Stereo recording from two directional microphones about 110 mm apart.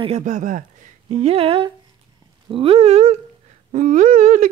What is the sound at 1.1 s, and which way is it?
Speech, 65° right (ahead or behind).